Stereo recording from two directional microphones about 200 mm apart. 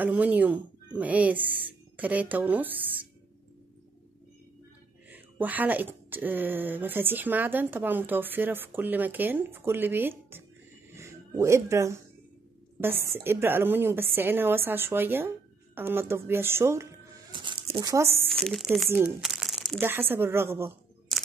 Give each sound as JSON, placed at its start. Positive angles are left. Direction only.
{"t": 0.0, "sound": "speech", "side_deg": -10}
{"t": 5.1, "sound": "speech", "side_deg": -10}
{"t": 10.9, "sound": "a sound", "side_deg": -15}
{"t": 13.1, "sound": "speech", "side_deg": -10}
{"t": 17.3, "sound": "a sound", "side_deg": -25}
{"t": 17.9, "sound": "speech", "side_deg": -15}
{"t": 18.3, "sound": "speech", "side_deg": 0}